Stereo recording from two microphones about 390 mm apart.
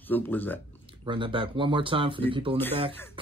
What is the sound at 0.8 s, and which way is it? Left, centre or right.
Speech, centre.